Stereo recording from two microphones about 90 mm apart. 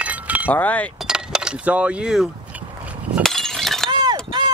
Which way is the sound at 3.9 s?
50° right (ahead or behind).